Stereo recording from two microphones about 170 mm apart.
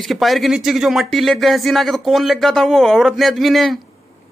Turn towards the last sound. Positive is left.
turn(degrees=0)  # may be behind; listen again after turning